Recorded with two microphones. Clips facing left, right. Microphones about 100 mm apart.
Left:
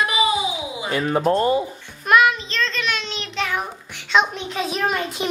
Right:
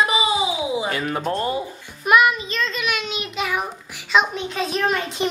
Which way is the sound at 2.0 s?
5° right (ahead or behind).